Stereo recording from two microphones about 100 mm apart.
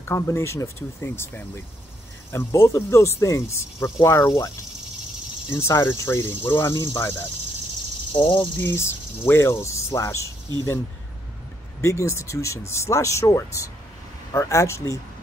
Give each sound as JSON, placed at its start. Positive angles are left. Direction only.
{"t": 0.0, "sound": "speech", "side_deg": 25}
{"t": 5.5, "sound": "speech", "side_deg": 25}
{"t": 8.1, "sound": "speech", "side_deg": 50}
{"t": 8.5, "sound": "speech", "side_deg": 25}
{"t": 11.8, "sound": "speech", "side_deg": 30}